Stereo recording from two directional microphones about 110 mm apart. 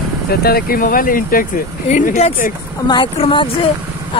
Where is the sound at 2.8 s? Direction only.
45° left (ahead or behind).